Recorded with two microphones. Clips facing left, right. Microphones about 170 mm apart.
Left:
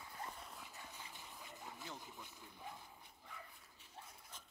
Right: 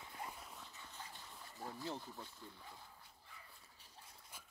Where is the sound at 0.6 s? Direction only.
10° left (ahead or behind).